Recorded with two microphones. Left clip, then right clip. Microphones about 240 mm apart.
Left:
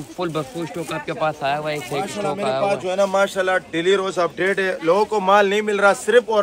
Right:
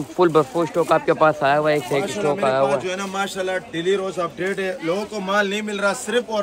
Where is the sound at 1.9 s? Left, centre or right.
Centre.